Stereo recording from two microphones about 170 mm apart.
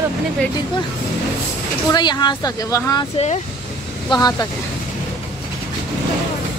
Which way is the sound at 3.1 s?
40° left (ahead or behind).